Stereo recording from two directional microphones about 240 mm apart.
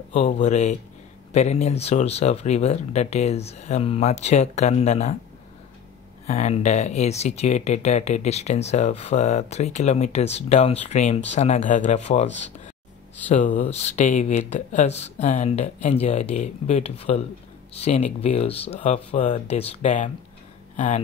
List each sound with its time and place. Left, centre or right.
0.1 s speech: left
6.2 s speech: left
13.6 s speech: left